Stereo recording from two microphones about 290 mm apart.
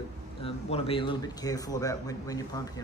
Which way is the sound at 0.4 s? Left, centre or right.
Centre.